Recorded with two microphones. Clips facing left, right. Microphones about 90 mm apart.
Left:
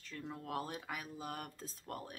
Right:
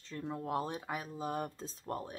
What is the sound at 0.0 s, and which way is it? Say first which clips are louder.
Speech: right 6 dB; 25° right (ahead or behind).